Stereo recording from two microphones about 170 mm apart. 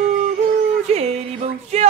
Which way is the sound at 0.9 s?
40° right (ahead or behind).